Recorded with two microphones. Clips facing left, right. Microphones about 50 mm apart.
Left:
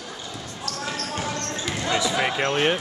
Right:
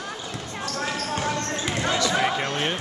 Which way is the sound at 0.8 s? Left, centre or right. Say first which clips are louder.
Right 2 dB; centre.